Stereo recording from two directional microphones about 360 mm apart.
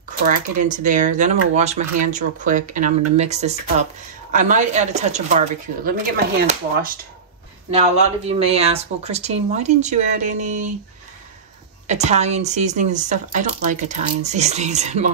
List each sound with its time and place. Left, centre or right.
0.3 s speech: right
11.9 s speech: centre